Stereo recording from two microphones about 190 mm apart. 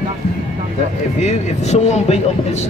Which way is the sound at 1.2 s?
35° left (ahead or behind).